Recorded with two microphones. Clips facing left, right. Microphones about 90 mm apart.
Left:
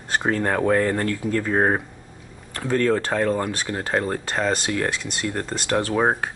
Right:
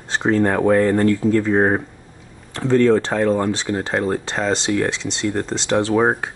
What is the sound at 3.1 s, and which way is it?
Speech, 10° right (ahead or behind).